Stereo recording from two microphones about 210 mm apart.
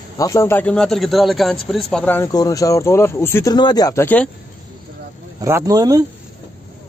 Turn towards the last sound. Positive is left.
turn(degrees=-15)  # may be behind; listen again after turning